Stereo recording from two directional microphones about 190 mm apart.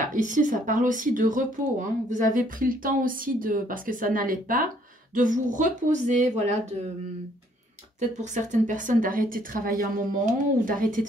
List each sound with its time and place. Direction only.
0.1 s speech: 45° right (ahead or behind)
8.2 s speech: 40° right (ahead or behind)